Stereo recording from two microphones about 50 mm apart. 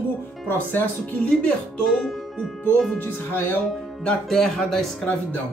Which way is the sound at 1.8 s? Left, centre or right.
Centre.